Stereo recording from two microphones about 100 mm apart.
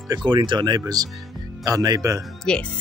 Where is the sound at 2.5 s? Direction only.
10° left (ahead or behind).